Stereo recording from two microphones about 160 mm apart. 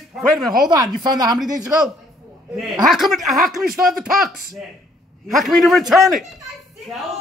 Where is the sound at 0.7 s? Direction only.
25° right (ahead or behind).